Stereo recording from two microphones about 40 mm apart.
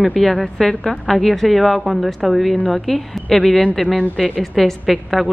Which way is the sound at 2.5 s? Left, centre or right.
Left.